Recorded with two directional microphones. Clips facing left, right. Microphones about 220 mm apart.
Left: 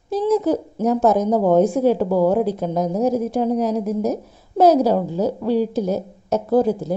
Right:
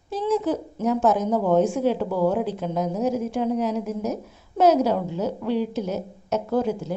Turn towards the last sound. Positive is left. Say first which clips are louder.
# left 6 dB
turn(degrees=35)  # may be behind; listen again after turning